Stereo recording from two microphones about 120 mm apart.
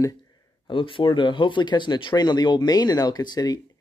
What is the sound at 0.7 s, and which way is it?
Speech, 45° left (ahead or behind).